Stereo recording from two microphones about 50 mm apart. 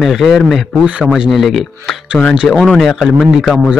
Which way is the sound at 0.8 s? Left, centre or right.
Centre.